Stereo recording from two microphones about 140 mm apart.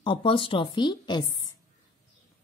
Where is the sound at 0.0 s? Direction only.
35° left (ahead or behind).